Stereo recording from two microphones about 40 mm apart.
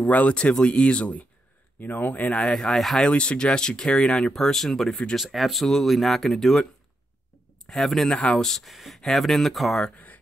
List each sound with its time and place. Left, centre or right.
0.1 s speech: left
1.8 s speech: left
2.5 s speech: centre
3.0 s speech: left; by 5.0 s centre
5.1 s speech: centre
7.6 s speech: centre
8.1 s speech: left
8.4 s speech: centre